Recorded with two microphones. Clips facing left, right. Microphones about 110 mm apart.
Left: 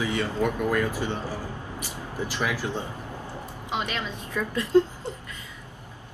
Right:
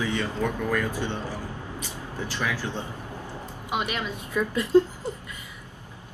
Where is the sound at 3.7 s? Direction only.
15° right (ahead or behind).